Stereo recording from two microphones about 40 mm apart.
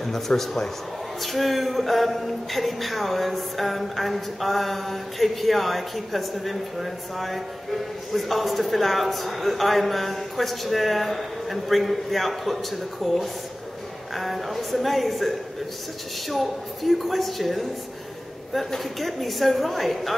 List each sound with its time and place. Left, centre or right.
0.3 s speech: centre
1.2 s speech: centre